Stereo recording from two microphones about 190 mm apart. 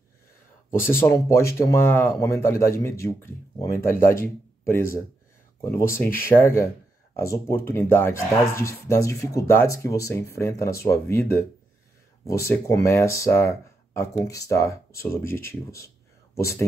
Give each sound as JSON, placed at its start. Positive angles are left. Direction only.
{"t": 0.7, "sound": "speech", "side_deg": 10}
{"t": 5.6, "sound": "speech", "side_deg": 15}